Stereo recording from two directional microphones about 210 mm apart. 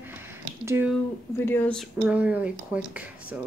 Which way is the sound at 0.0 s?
10° right (ahead or behind).